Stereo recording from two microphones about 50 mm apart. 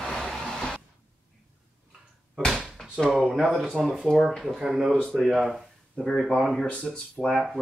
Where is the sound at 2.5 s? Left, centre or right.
Centre.